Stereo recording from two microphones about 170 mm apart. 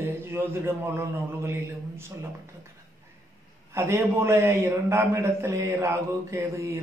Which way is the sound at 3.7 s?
15° right (ahead or behind).